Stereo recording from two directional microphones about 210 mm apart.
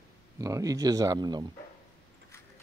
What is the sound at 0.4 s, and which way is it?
Speech, 15° right (ahead or behind).